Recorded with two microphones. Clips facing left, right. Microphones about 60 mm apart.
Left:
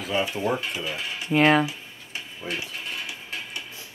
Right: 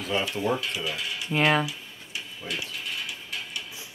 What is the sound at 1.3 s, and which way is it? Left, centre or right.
Speech, centre.